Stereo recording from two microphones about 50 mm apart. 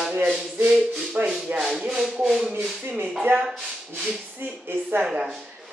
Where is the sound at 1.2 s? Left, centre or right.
Right.